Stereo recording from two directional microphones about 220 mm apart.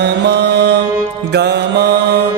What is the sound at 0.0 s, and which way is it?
Mantra, 50° right (ahead or behind).